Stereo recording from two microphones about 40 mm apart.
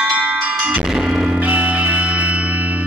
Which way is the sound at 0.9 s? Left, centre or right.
Centre.